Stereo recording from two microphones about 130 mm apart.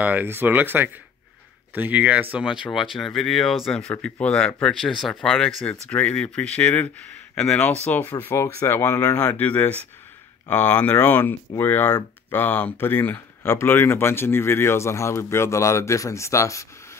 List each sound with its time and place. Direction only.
0.0 s speech: 15° right (ahead or behind); by 16.6 s 25° left (ahead or behind)